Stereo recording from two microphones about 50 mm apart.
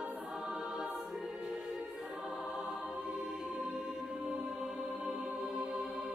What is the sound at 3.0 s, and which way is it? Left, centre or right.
Music, right.